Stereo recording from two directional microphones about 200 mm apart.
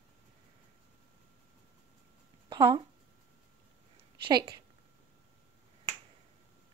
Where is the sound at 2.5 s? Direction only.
25° right (ahead or behind).